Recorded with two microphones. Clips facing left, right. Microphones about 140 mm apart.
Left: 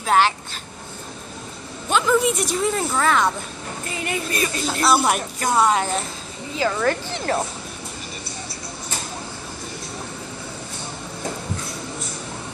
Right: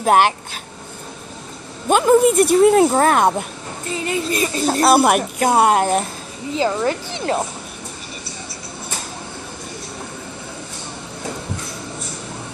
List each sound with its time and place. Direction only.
0.0 s speech: 50° right (ahead or behind)
1.9 s speech: 50° right (ahead or behind)
2.9 s speech: 45° right (ahead or behind)
4.0 s speech: 30° right (ahead or behind)
4.6 s speech: 50° right (ahead or behind)
6.5 s speech: 20° right (ahead or behind)